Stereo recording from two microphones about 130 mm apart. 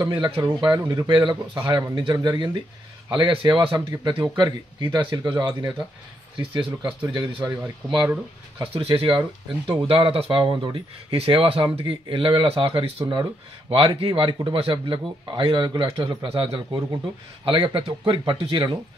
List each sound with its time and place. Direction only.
0.0 s speech: 30° right (ahead or behind)
1.6 s speech: 25° right (ahead or behind); by 12.9 s 45° right (ahead or behind)
13.0 s speech: 30° right (ahead or behind)